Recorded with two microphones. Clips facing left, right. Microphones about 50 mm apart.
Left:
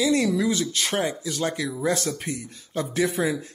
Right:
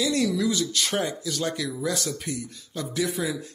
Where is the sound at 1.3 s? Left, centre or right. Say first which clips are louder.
Left 2 dB; centre.